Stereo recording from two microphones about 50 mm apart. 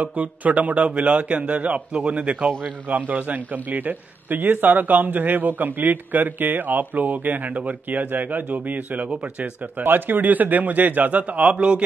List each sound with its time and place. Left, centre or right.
0.0 s a man's voice: right
9.8 s a man's voice: right